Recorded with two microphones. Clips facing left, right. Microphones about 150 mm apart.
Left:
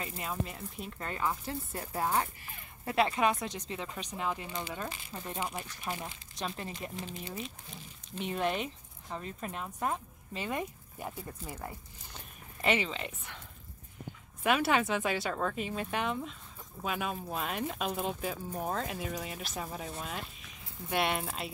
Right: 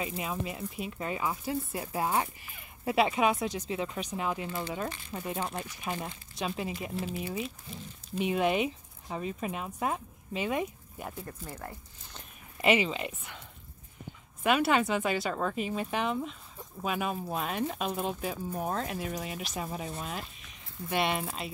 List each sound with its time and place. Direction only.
0.0 s speech: 10° right (ahead or behind)
5.9 s speech: 20° right (ahead or behind)
6.3 s speech: 5° right (ahead or behind)
8.1 s speech: 10° right (ahead or behind); by 12.2 s 5° left (ahead or behind)
12.6 s speech: 10° right (ahead or behind)
14.4 s speech: centre (ahead or behind)